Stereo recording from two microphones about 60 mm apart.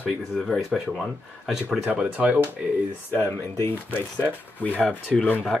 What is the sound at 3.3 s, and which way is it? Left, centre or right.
Speech, left.